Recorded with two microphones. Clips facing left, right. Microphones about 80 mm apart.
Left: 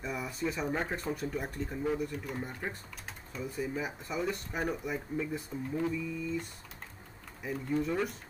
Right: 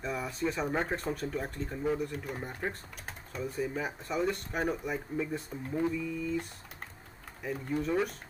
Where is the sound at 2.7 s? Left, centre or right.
Right.